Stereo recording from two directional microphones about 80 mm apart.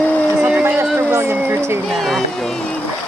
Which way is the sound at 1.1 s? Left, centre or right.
Right.